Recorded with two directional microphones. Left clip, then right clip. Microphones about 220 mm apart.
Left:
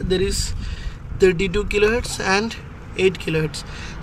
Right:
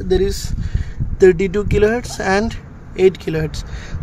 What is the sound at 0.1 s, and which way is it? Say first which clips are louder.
Speech: right 4 dB; 35° right (ahead or behind).